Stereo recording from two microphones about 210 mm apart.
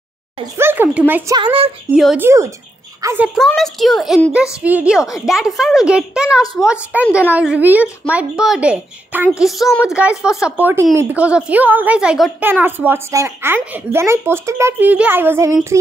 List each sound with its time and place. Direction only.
0.6 s a woman's voice: 10° right (ahead or behind)
1.3 s speech: 25° right (ahead or behind)
2.0 s speech: centre (ahead or behind)
2.2 s a woman's voice: 15° right (ahead or behind)
3.3 s a woman's voice: centre (ahead or behind); by 15.8 s 15° right (ahead or behind)